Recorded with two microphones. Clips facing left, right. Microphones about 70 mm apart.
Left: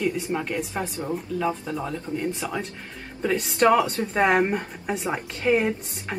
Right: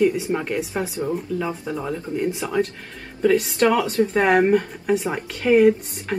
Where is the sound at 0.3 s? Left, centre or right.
Centre.